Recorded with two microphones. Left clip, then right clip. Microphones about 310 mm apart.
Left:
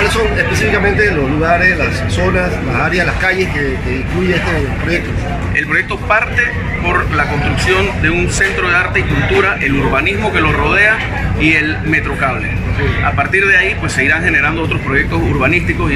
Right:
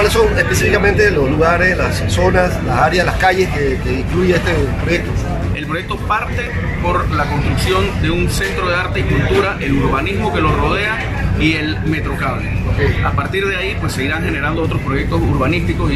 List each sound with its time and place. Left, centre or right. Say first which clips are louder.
0.6 s a man's voice: left 1 dB; right
9.9 s speech: left 4 dB; centre
13.3 s speech: left 8 dB; centre